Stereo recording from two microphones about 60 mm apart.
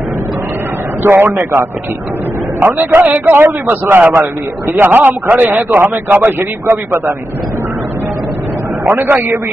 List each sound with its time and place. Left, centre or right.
1.0 s a man's voice: right
2.6 s a man's voice: right
8.8 s a man's voice: right